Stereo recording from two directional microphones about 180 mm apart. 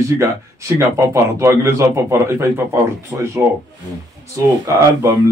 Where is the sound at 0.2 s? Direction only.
15° right (ahead or behind).